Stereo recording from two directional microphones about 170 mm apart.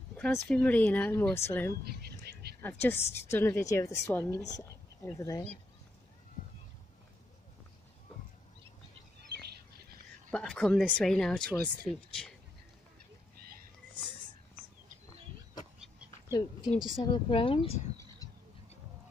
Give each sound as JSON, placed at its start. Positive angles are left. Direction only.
{"t": 0.2, "sound": "speech", "side_deg": 5}
{"t": 1.9, "sound": "whispering", "side_deg": -65}
{"t": 2.6, "sound": "speech", "side_deg": 15}
{"t": 9.5, "sound": "bird", "side_deg": -65}
{"t": 10.3, "sound": "speech", "side_deg": 5}
{"t": 16.3, "sound": "speech", "side_deg": 20}
{"t": 18.2, "sound": "a sound", "side_deg": 20}